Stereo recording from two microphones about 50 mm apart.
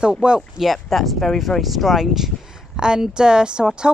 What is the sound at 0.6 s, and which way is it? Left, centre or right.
A woman's voice, centre.